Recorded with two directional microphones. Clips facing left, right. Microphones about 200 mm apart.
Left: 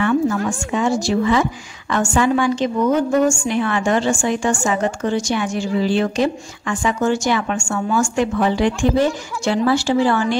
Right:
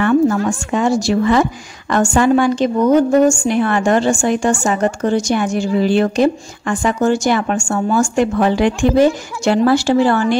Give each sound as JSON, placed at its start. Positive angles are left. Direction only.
{"t": 0.0, "sound": "a woman's voice", "side_deg": -45}
{"t": 4.4, "sound": "a woman's voice", "side_deg": -40}
{"t": 8.2, "sound": "a woman's voice", "side_deg": -50}
{"t": 9.8, "sound": "a woman's voice", "side_deg": -50}